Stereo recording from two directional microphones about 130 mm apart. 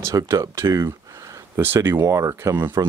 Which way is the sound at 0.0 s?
25° right (ahead or behind).